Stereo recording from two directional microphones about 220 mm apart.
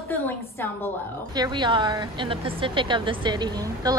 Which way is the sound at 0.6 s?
10° left (ahead or behind).